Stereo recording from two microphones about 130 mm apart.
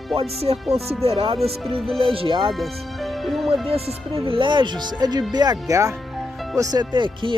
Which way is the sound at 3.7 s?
50° right (ahead or behind).